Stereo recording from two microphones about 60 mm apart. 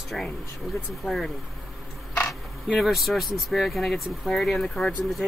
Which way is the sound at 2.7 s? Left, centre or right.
Centre.